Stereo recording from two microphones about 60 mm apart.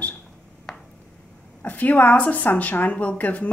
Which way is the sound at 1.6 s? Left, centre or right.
Left.